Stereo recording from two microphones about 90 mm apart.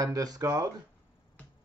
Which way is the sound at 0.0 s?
40° right (ahead or behind).